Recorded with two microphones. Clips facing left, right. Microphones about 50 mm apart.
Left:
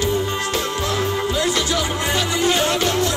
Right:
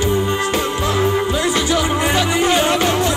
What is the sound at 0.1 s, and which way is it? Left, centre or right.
Music, right.